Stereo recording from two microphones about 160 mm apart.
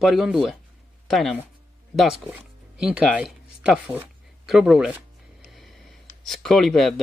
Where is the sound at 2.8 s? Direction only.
5° right (ahead or behind).